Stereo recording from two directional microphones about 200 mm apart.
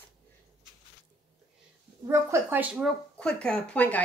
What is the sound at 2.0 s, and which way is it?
Speech, 10° right (ahead or behind).